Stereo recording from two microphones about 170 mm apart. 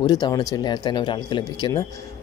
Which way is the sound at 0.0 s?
25° left (ahead or behind).